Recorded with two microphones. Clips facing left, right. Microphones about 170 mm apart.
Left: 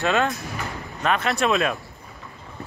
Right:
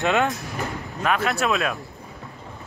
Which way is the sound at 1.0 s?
5° right (ahead or behind).